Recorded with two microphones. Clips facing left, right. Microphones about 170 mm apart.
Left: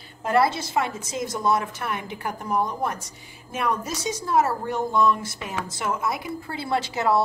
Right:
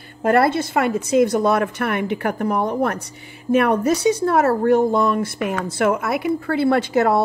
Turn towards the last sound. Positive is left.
turn(degrees=-55)  # may be behind; listen again after turning